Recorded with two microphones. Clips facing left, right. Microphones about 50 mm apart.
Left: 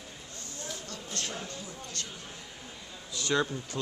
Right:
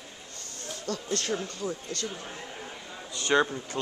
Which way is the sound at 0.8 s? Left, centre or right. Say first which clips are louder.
Right 12 dB; right.